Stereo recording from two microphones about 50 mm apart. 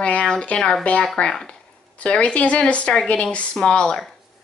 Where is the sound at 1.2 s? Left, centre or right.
Left.